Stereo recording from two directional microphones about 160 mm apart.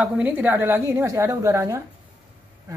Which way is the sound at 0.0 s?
10° right (ahead or behind).